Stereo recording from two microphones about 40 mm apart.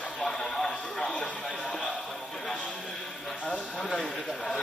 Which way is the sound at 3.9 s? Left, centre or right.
Centre.